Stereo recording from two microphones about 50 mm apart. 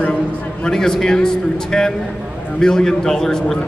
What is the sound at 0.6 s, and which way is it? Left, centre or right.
A man's voice, centre.